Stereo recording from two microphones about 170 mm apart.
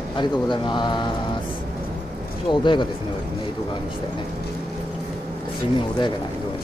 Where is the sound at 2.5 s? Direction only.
30° left (ahead or behind).